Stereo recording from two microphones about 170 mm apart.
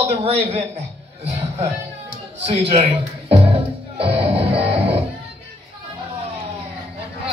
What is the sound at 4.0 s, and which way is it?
Music, 35° right (ahead or behind).